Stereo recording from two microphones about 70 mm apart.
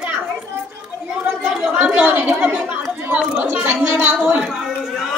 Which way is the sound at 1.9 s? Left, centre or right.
Right.